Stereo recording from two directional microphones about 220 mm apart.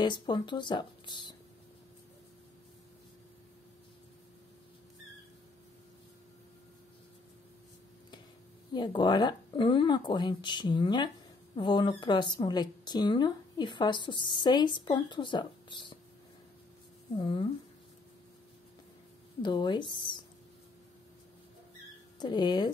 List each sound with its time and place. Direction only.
0.0 s a woman's voice: 20° left (ahead or behind)
8.7 s a woman's voice: 20° left (ahead or behind)
17.2 s a woman's voice: 25° left (ahead or behind)
19.4 s a woman's voice: 20° left (ahead or behind)
22.2 s a woman's voice: 20° left (ahead or behind)